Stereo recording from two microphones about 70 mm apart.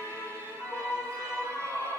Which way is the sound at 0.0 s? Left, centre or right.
Left.